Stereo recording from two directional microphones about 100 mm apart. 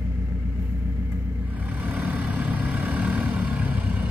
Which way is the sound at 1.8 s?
15° right (ahead or behind).